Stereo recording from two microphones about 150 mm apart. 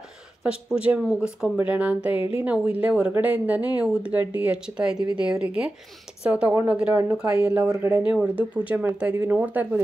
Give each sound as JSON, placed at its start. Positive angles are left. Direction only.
{"t": 0.4, "sound": "speech", "side_deg": -5}